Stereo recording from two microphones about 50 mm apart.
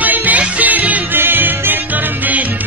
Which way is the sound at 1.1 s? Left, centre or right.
Right.